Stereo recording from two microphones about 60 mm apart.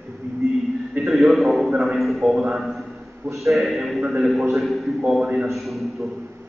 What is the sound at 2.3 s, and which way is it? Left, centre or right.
Speech, centre.